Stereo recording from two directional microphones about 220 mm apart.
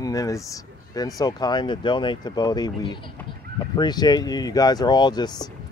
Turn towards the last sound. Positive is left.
turn(degrees=20)  # may be behind; listen again after turning